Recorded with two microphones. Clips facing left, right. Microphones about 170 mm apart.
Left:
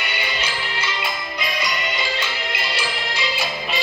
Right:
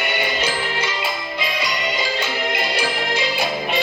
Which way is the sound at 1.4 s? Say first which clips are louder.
Right 1 dB; 30° right (ahead or behind).